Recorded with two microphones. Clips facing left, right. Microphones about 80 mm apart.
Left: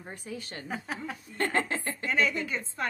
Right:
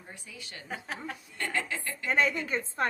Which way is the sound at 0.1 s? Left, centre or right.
Left.